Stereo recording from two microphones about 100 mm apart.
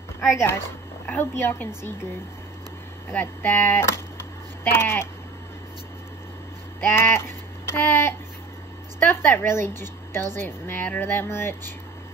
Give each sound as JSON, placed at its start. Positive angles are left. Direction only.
{"t": 0.3, "sound": "a woman's voice", "side_deg": 25}
{"t": 3.1, "sound": "a woman's voice", "side_deg": 15}
{"t": 6.8, "sound": "child singing", "side_deg": 25}
{"t": 9.0, "sound": "a woman's voice", "side_deg": 20}